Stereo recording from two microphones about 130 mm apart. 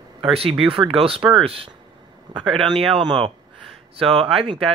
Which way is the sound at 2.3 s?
40° right (ahead or behind).